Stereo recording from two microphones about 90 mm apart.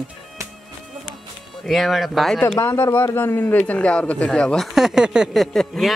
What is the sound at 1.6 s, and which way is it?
Speech, centre (ahead or behind).